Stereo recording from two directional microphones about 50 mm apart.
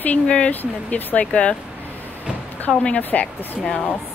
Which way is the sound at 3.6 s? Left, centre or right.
Centre.